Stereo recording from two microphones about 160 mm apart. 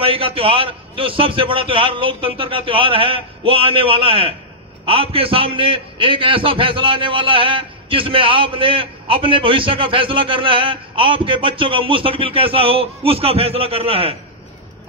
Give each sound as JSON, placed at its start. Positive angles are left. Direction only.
{"t": 0.0, "sound": "a man's voice", "side_deg": -35}